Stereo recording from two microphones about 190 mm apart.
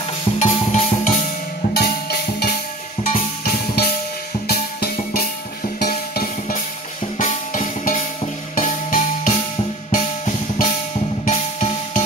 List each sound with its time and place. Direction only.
0.4 s music: 40° left (ahead or behind)
1.7 s music: 55° left (ahead or behind); by 12.0 s 35° left (ahead or behind)